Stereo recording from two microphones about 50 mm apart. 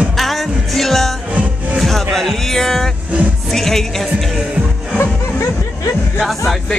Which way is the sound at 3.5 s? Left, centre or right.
Centre.